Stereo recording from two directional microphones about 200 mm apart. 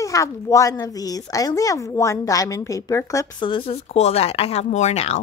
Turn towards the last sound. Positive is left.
turn(degrees=35)  # may be behind; listen again after turning